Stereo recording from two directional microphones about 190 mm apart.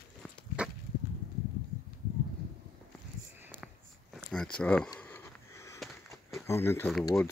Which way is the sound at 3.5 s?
Centre (ahead or behind).